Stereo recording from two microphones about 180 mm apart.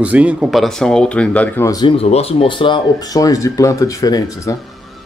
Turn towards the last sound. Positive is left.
turn(degrees=20)  # may be behind; listen again after turning